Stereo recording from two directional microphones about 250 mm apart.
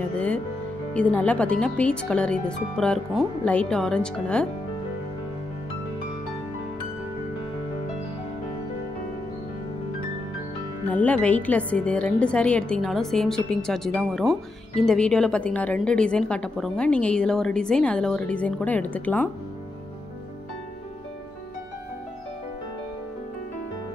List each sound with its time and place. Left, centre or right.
0.9 s a woman's voice: centre
11.1 s a woman's voice: centre